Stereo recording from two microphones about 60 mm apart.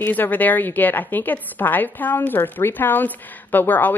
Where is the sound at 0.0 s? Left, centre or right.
Left.